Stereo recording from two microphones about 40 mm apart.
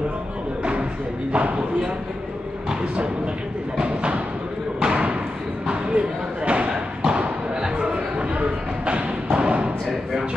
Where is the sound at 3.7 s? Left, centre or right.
Right.